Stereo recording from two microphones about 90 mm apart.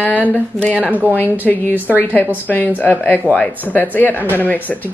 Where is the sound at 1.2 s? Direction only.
20° left (ahead or behind).